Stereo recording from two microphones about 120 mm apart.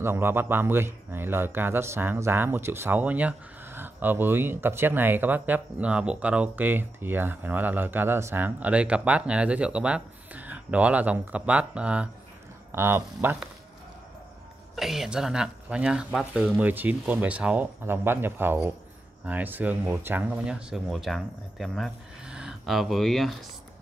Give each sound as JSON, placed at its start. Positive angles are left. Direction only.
{"t": 0.0, "sound": "speech", "side_deg": -20}
{"t": 14.8, "sound": "speech", "side_deg": -5}